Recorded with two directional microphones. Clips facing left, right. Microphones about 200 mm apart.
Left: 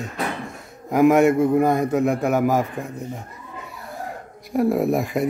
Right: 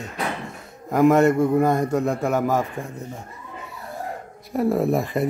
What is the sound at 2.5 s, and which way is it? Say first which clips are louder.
Speech: left 2 dB; 15° left (ahead or behind).